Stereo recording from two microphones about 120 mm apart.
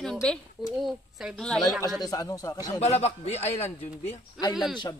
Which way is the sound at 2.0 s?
30° left (ahead or behind).